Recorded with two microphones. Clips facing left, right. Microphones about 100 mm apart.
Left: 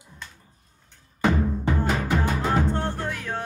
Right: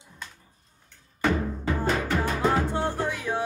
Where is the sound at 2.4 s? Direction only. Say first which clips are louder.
Even; 15° right (ahead or behind).